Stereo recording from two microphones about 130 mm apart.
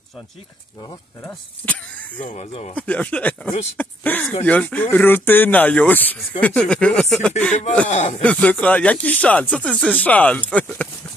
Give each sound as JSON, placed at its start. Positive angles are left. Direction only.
{"t": 1.2, "sound": "speech", "side_deg": 10}
{"t": 2.2, "sound": "speech", "side_deg": 60}
{"t": 2.7, "sound": "speech", "side_deg": 10}
{"t": 7.9, "sound": "speech", "side_deg": 65}
{"t": 8.2, "sound": "speech", "side_deg": 10}